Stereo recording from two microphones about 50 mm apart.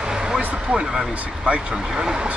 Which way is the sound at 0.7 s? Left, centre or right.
Centre.